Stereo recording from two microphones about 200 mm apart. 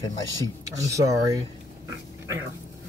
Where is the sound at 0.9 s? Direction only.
15° right (ahead or behind).